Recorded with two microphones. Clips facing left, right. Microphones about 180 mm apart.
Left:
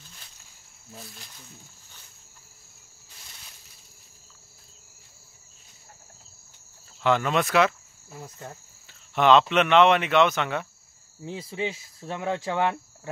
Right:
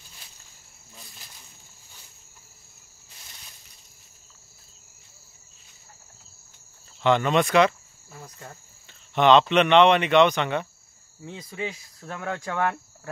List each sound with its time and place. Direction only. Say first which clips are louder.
7.0 s speech: right 2 dB; 5° left (ahead or behind)
11.2 s speech: left 3 dB; 30° left (ahead or behind)